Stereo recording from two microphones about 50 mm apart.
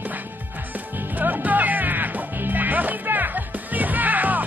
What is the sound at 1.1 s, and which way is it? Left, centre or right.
Music, right.